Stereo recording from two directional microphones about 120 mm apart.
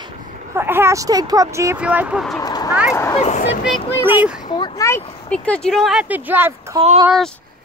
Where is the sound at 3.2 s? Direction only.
70° left (ahead or behind).